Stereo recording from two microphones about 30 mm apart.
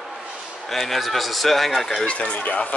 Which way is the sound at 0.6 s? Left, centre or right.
Centre.